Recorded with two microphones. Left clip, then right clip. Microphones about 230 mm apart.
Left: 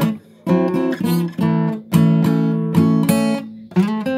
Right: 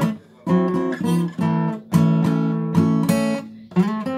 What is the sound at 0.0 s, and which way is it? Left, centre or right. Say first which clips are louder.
Guitar: left 3 dB; left.